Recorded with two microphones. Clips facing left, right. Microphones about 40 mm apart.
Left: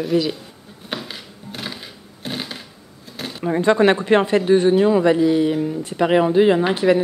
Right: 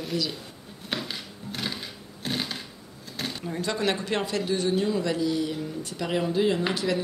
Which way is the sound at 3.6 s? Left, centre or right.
Left.